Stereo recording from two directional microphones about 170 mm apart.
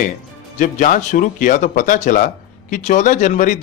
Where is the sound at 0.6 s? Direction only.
50° left (ahead or behind).